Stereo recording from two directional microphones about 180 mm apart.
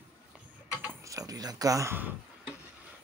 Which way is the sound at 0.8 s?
15° right (ahead or behind).